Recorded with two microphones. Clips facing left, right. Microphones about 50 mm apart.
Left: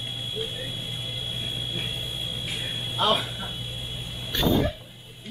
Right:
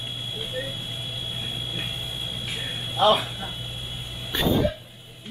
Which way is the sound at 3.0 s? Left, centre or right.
Right.